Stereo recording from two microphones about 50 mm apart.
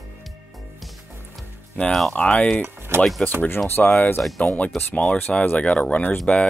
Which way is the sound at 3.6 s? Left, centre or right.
Left.